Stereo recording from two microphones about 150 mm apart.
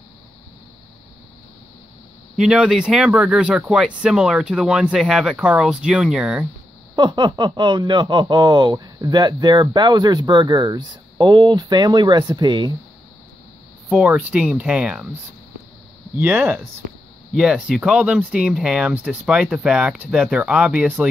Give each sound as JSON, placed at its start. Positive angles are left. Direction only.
{"t": 2.3, "sound": "speech", "side_deg": -5}
{"t": 7.0, "sound": "speech", "side_deg": -30}
{"t": 13.8, "sound": "speech", "side_deg": -5}
{"t": 16.2, "sound": "speech", "side_deg": -10}